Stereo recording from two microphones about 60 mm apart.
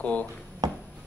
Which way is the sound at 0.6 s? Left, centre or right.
Right.